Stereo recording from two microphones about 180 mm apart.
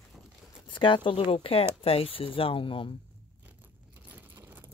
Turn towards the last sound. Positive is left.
turn(degrees=-10)  # may be behind; listen again after turning